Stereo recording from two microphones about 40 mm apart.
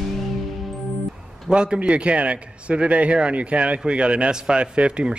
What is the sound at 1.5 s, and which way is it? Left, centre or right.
Speech, right.